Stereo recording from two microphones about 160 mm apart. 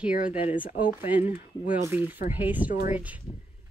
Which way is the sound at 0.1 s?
55° left (ahead or behind).